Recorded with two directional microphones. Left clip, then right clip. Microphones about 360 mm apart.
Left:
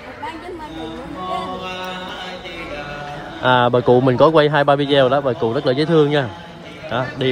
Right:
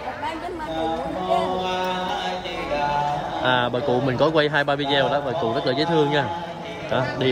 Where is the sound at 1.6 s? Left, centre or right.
Right.